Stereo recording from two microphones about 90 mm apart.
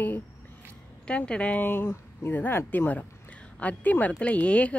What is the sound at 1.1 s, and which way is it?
Speech, 15° left (ahead or behind).